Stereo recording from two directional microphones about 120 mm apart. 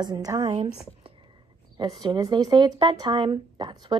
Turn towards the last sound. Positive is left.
turn(degrees=-40)  # may be behind; listen again after turning